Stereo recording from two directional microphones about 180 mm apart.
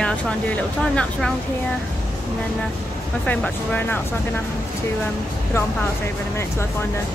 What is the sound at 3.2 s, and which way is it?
Speech, 10° left (ahead or behind).